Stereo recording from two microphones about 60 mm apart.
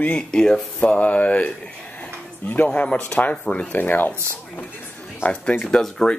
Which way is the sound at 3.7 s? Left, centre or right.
Left.